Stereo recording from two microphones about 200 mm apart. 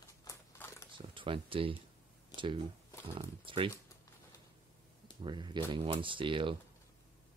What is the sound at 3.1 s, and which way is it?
Speech, 25° right (ahead or behind).